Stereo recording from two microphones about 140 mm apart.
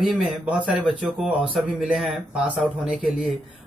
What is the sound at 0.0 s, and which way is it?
A man's voice, 10° right (ahead or behind).